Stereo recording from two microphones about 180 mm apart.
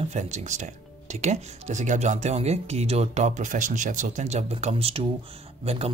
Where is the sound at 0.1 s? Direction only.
40° right (ahead or behind).